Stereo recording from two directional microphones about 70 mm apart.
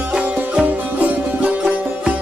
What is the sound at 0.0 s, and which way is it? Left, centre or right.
Music, centre.